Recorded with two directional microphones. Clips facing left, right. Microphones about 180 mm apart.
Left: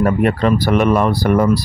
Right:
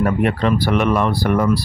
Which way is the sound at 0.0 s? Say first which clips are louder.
Left 3 dB; 40° left (ahead or behind).